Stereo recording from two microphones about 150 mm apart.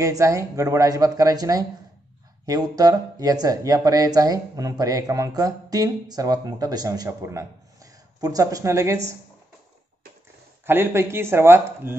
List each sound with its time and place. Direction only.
0.0 s speech: 20° right (ahead or behind)
10.7 s speech: 15° right (ahead or behind)